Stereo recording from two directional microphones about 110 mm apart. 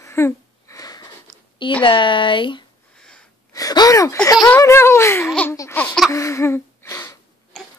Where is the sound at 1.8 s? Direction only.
50° left (ahead or behind).